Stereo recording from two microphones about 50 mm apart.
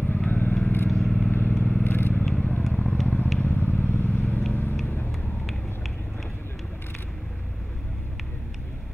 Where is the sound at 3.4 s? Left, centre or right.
Left.